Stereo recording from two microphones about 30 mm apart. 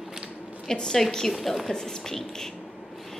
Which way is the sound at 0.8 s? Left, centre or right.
Centre.